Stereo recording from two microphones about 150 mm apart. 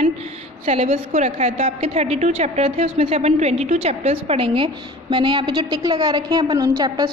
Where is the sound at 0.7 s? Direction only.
45° right (ahead or behind).